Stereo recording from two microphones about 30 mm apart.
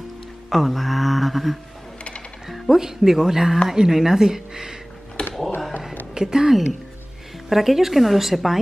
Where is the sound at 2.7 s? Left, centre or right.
Centre.